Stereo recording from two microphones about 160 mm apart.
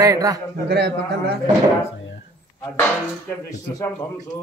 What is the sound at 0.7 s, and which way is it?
Speech, 90° right.